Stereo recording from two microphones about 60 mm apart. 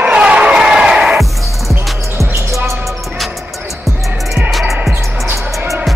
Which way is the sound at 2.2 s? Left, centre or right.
Right.